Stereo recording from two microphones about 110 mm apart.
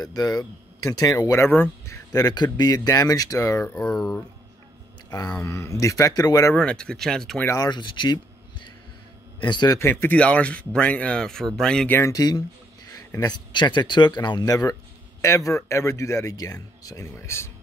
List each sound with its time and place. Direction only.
0.0 s speech: 35° left (ahead or behind)
3.8 s speech: 5° left (ahead or behind)
5.4 s speech: 25° left (ahead or behind)
6.5 s speech: 10° left (ahead or behind)
7.5 s speech: 40° left (ahead or behind)
9.8 s speech: 20° left (ahead or behind)
12.1 s speech: 35° left (ahead or behind)